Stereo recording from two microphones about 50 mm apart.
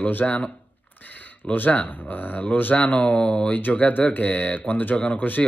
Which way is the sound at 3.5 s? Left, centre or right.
Left.